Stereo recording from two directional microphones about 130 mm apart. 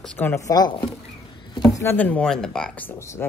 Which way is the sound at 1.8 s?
15° left (ahead or behind).